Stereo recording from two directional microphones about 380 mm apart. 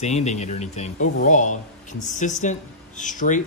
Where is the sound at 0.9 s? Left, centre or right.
Left.